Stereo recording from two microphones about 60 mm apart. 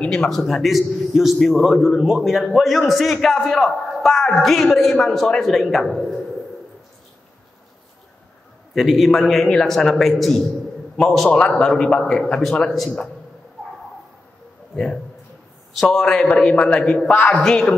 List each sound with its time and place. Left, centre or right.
0.0 s a man's voice: centre
8.7 s a man's voice: centre
11.2 s a man's voice: centre
15.7 s a man's voice: centre; by 17.4 s left
17.4 s a man's voice: centre